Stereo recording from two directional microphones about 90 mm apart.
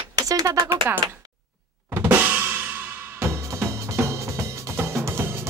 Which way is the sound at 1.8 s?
20° right (ahead or behind).